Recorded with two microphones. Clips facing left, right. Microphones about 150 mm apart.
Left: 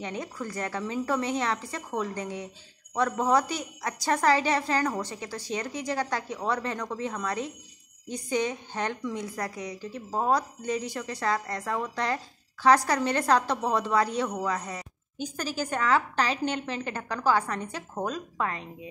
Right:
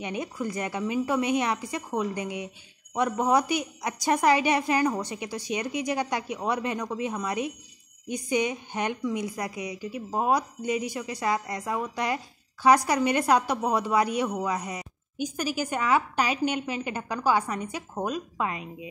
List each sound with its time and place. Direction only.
0.0 s a woman's voice: 15° right (ahead or behind)